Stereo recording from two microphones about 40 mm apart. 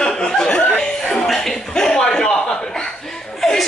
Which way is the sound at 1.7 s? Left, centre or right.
Centre.